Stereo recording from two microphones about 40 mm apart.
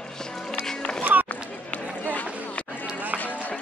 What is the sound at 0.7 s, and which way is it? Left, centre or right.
Music, centre.